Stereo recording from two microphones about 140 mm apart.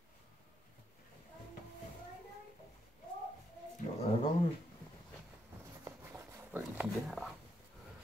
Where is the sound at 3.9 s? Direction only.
50° left (ahead or behind).